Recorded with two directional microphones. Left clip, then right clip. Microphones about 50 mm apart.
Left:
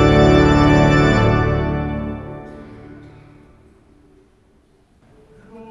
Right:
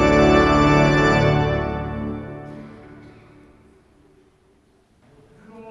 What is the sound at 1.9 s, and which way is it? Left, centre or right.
Music, centre.